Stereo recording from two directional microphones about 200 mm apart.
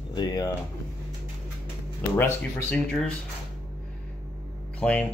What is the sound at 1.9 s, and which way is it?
Speech, 10° left (ahead or behind).